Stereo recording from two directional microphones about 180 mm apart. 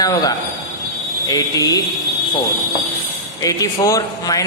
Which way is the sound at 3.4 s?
20° left (ahead or behind).